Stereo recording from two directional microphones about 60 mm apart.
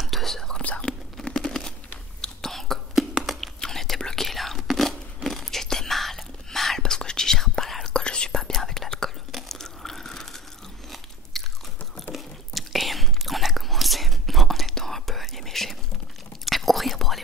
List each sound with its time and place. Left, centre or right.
0.0 s whispering: centre
0.6 s whispering: centre
1.2 s a sound: centre
2.2 s whispering: centre
9.3 s a sound: centre
11.3 s biting: centre
12.1 s whispering: centre